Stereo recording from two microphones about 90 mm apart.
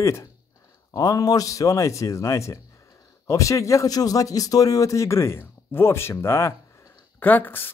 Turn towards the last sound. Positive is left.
turn(degrees=20)  # may be behind; listen again after turning